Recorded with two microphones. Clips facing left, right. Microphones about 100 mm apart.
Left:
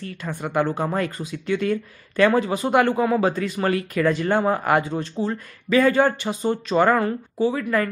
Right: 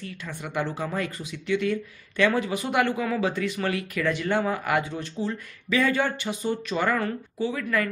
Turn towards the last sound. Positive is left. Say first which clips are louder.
# left 5 dB
turn(degrees=35)  # may be behind; listen again after turning